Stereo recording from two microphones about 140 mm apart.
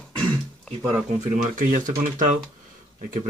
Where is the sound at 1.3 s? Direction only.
70° right (ahead or behind).